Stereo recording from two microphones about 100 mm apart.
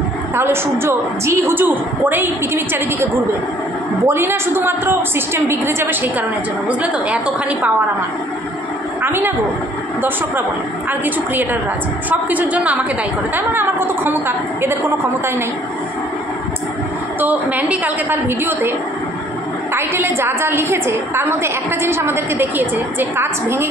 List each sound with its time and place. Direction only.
0.4 s a woman's voice: 25° right (ahead or behind)
9.0 s a woman's voice: 20° right (ahead or behind)
12.1 s a woman's voice: 15° right (ahead or behind)
17.2 s a woman's voice: 15° right (ahead or behind)
19.7 s a woman's voice: 25° right (ahead or behind)